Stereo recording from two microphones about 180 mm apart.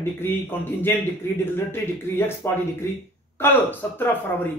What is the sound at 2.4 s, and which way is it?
Speech, 15° left (ahead or behind).